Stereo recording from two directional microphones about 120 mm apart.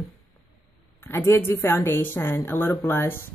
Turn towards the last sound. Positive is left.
turn(degrees=20)  # may be behind; listen again after turning